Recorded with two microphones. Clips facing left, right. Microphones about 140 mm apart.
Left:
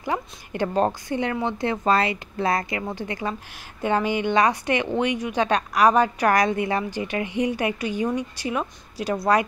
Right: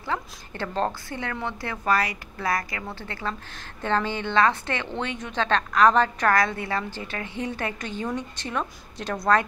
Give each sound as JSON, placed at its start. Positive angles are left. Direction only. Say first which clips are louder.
{"t": 0.0, "sound": "speech", "louder": "left 3 dB", "side_deg": 15}